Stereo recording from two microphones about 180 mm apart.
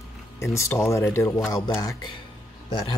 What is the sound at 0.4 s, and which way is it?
Speech, 15° left (ahead or behind).